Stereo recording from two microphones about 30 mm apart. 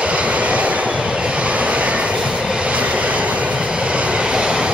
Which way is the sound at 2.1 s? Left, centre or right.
Right.